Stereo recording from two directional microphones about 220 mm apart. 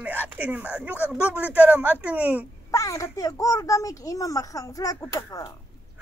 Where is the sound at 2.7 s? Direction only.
15° left (ahead or behind).